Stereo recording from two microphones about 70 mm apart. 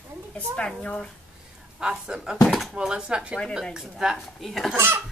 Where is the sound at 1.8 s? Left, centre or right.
Centre.